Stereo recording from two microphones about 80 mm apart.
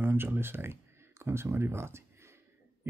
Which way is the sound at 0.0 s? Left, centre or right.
Right.